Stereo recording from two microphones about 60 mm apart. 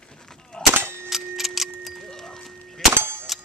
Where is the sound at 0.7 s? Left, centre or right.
Right.